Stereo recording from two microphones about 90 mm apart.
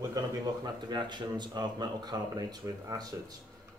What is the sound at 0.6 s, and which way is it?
Speech, 55° right (ahead or behind).